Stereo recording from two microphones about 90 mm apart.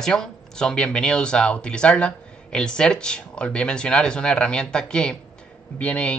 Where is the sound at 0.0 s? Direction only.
5° left (ahead or behind).